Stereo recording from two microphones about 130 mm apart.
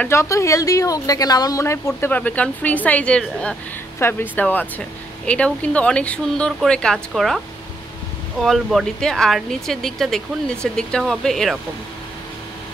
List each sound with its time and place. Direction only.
0.1 s a woman's voice: 20° left (ahead or behind)
2.0 s speech: 15° left (ahead or behind)